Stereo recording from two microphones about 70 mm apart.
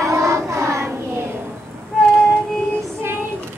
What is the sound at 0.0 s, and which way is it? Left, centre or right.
Child singing, right.